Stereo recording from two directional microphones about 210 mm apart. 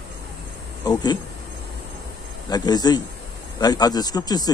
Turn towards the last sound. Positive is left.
turn(degrees=20)  # may be behind; listen again after turning